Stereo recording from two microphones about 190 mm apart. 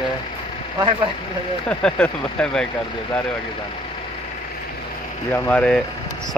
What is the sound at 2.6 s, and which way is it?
Speech, 25° left (ahead or behind).